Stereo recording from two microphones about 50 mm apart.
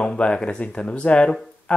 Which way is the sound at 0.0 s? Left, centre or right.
Centre.